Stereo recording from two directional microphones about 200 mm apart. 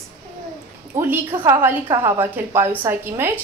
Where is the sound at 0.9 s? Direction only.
10° right (ahead or behind).